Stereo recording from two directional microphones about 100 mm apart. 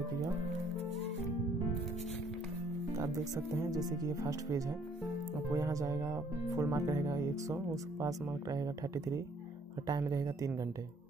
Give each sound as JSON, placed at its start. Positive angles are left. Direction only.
{"t": 3.0, "sound": "speech", "side_deg": -35}